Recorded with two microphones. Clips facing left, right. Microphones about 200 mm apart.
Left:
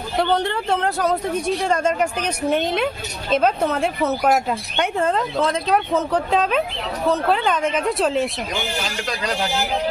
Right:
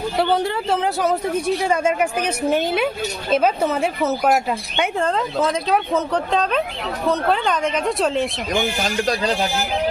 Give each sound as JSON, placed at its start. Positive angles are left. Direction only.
{"t": 0.2, "sound": "speech", "side_deg": -5}
{"t": 8.8, "sound": "speech", "side_deg": -35}